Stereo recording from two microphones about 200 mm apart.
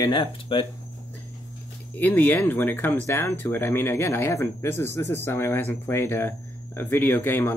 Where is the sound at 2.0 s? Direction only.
10° left (ahead or behind).